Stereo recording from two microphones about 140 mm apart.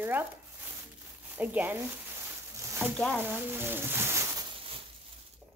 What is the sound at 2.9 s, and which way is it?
Speech, 10° left (ahead or behind).